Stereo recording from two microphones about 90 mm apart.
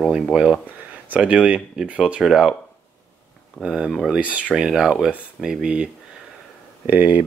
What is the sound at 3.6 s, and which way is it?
Speech, 10° right (ahead or behind).